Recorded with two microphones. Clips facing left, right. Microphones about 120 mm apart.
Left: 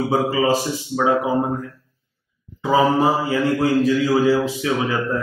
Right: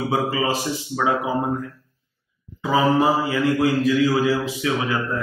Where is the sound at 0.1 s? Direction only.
30° left (ahead or behind).